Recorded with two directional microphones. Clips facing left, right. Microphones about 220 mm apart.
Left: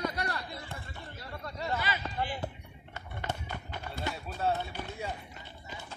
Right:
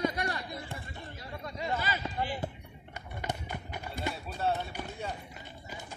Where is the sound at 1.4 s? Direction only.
15° right (ahead or behind).